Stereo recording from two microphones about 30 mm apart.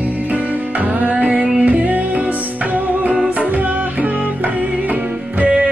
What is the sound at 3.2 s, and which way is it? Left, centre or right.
Music, right.